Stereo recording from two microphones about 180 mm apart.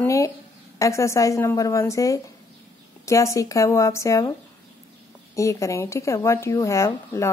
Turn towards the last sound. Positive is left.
turn(degrees=15)  # may be behind; listen again after turning